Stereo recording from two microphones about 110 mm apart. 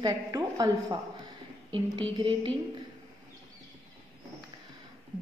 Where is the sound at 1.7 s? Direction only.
50° right (ahead or behind).